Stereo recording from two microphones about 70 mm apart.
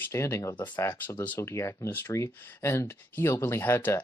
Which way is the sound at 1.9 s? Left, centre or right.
Left.